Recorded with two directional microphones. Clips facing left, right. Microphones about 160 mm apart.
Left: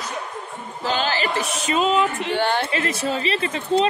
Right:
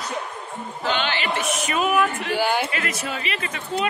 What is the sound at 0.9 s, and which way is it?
Speech, 35° left (ahead or behind).